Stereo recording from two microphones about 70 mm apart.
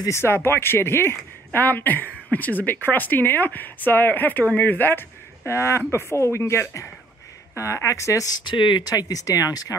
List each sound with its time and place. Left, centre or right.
0.1 s speech: left
5.5 s speech: left
8.6 s speech: left